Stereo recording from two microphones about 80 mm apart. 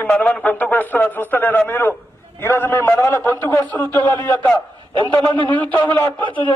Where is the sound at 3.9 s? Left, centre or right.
Right.